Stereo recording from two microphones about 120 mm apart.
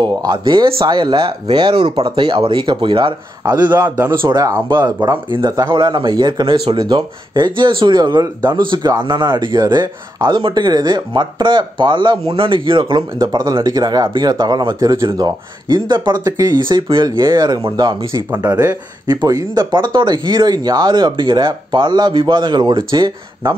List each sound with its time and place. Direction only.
0.0 s a man's voice: 35° right (ahead or behind)
18.4 s speech: 25° right (ahead or behind); by 23.5 s 40° right (ahead or behind)